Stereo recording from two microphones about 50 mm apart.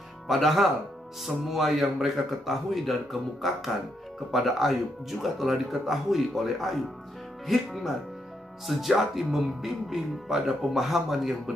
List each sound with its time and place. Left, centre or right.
0.3 s speech: centre